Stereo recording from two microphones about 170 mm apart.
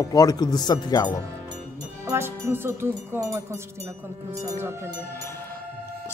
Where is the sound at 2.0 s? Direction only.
15° right (ahead or behind).